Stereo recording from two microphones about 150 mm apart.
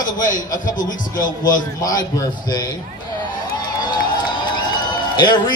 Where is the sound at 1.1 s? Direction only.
25° left (ahead or behind).